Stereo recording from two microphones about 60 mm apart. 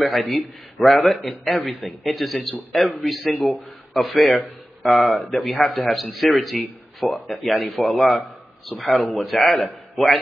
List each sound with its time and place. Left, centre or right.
0.0 s speech: centre